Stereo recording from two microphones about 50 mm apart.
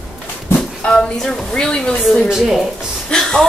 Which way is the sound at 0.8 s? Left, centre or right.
Centre.